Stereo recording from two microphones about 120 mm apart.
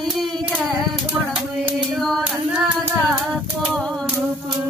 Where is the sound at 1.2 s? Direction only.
20° right (ahead or behind).